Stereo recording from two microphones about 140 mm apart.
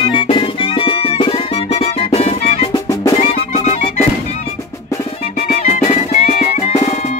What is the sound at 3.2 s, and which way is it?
Music, 55° left (ahead or behind).